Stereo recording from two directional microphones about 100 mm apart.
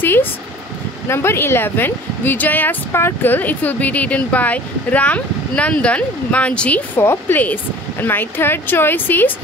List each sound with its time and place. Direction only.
0.0 s a sound: 20° left (ahead or behind)
1.0 s speech: 25° left (ahead or behind)
7.0 s speech: 25° left (ahead or behind)